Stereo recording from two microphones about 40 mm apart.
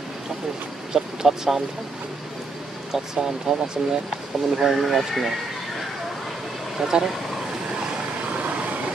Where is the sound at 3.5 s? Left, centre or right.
Centre.